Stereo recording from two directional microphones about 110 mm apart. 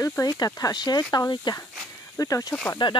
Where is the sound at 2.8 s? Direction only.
45° left (ahead or behind).